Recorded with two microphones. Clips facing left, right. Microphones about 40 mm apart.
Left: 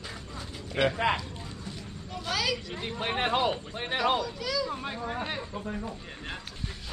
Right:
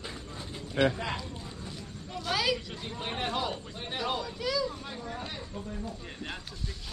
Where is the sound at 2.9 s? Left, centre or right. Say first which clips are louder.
Left 5 dB; left.